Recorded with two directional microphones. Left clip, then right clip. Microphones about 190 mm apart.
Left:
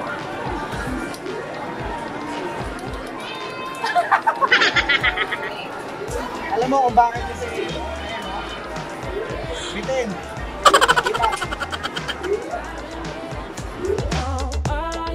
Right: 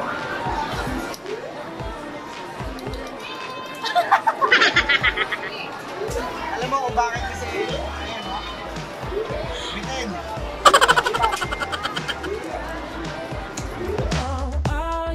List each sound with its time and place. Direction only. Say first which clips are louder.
3.8 s music: even; 5° left (ahead or behind)
7.0 s speech: left 7 dB; 20° left (ahead or behind)
10.6 s music: even; centre (ahead or behind)